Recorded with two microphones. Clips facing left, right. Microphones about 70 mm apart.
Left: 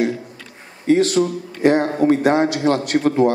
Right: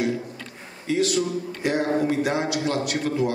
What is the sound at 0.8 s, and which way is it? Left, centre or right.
A man's voice, left.